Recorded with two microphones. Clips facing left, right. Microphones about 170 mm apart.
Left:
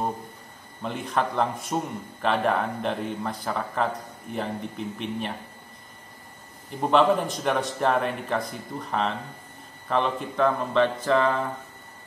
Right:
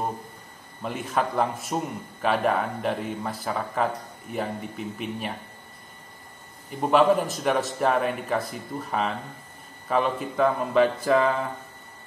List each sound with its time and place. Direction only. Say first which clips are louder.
0.8 s speech: even; 5° right (ahead or behind)
6.8 s speech: right 1 dB; 5° right (ahead or behind)